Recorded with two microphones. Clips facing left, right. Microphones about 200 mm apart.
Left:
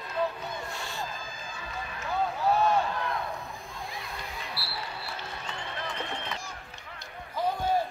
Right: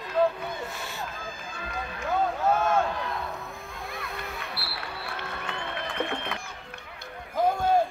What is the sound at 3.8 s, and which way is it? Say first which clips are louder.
Music: right 3 dB; 60° right (ahead or behind).